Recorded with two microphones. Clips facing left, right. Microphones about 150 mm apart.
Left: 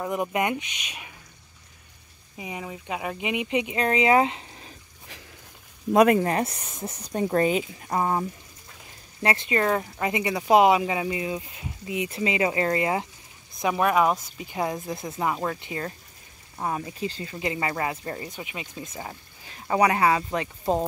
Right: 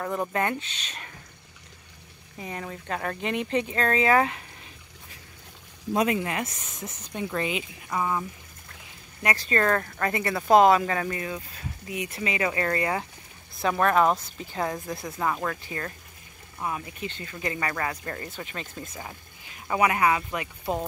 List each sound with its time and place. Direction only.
0.0 s speech: 15° left (ahead or behind)
2.3 s speech: 10° left (ahead or behind)
6.1 s speech: 35° left (ahead or behind)
9.2 s speech: 25° left (ahead or behind)
9.5 s speech: 10° left (ahead or behind)
16.5 s speech: 35° left (ahead or behind); by 18.7 s 10° left (ahead or behind)
18.9 s speech: 30° left (ahead or behind)